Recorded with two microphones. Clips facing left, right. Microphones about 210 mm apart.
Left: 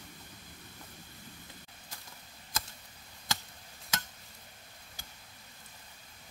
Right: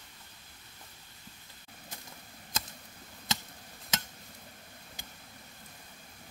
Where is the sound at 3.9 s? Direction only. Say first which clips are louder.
Right 1 dB; 20° right (ahead or behind).